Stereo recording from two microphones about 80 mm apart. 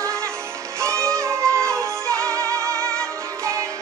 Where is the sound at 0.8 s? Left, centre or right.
Right.